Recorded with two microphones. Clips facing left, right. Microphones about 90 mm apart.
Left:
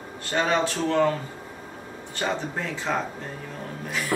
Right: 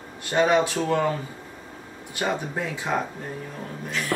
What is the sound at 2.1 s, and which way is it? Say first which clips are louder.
Speech: right 1 dB; 10° right (ahead or behind).